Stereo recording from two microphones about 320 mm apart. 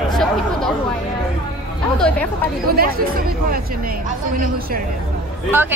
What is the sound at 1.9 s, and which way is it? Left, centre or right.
Speech, centre.